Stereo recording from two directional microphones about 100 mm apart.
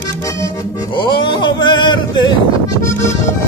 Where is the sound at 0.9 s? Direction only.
55° left (ahead or behind).